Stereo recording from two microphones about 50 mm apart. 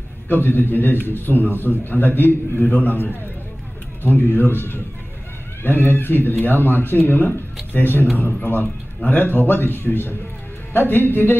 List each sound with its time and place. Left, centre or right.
0.3 s a man's voice: left
9.1 s a man's voice: left